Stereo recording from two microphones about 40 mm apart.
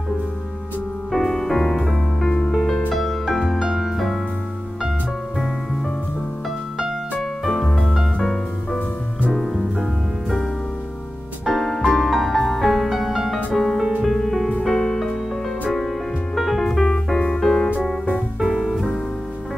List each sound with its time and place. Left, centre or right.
1.1 s music: centre
2.2 s music: left
2.5 s music: centre
7.4 s music: centre
9.3 s music: centre
11.4 s music: centre
16.3 s music: centre
16.6 s music: centre